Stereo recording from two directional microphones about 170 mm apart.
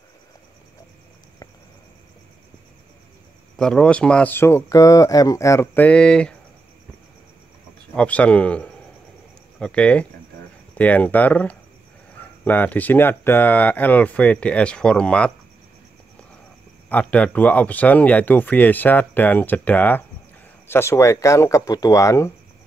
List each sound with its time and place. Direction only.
3.5 s speech: 5° left (ahead or behind)
7.9 s speech: 5° left (ahead or behind)
16.9 s speech: 10° left (ahead or behind)